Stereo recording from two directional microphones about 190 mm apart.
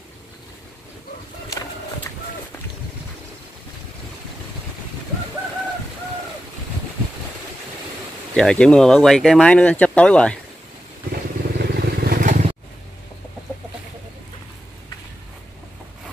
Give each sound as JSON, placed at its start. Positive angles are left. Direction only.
{"t": 8.4, "sound": "speech", "side_deg": 5}
{"t": 11.5, "sound": "vehicle", "side_deg": -55}